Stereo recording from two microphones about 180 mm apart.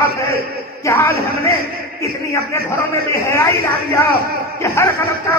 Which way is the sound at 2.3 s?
15° left (ahead or behind).